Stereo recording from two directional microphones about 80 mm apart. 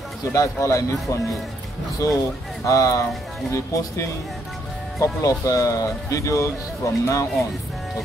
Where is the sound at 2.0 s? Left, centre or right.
Left.